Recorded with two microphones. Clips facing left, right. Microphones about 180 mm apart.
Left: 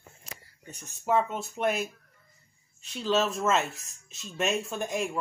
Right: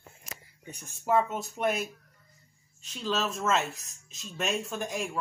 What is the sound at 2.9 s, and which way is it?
Speech, 5° left (ahead or behind).